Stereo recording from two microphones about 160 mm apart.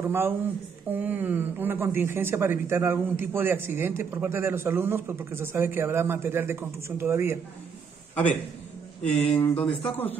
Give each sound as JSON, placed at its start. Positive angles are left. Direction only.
{"t": 0.0, "sound": "speech", "side_deg": -15}
{"t": 9.2, "sound": "speech", "side_deg": 10}